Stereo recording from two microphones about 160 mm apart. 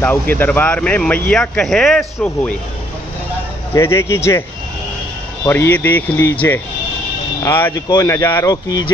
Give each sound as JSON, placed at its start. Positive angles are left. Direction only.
{"t": 0.0, "sound": "speech", "side_deg": 10}
{"t": 3.7, "sound": "speech", "side_deg": 15}